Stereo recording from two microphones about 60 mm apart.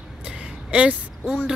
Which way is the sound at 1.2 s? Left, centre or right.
Centre.